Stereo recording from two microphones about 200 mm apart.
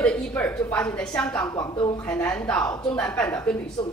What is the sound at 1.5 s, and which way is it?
Speech, 20° left (ahead or behind).